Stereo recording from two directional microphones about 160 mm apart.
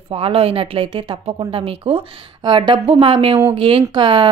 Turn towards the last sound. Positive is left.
turn(degrees=-30)  # may be behind; listen again after turning